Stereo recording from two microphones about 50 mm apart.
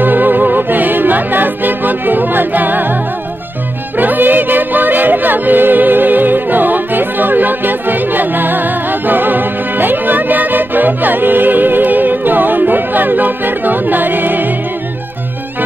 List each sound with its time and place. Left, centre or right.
0.0 s music: right
4.0 s music: right